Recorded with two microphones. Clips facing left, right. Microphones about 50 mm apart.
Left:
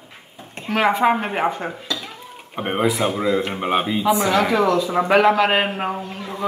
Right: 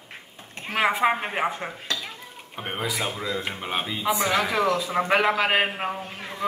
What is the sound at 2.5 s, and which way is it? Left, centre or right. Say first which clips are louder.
Speech: left 8 dB; left.